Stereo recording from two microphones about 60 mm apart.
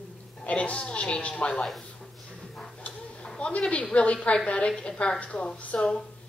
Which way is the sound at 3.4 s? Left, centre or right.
Centre.